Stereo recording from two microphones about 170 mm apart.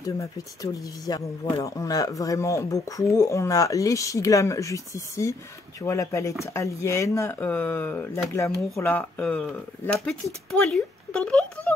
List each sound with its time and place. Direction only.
0.0 s speech: 20° left (ahead or behind); by 11.4 s 5° left (ahead or behind)